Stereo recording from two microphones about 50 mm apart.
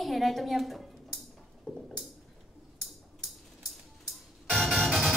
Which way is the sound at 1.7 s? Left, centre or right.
Centre.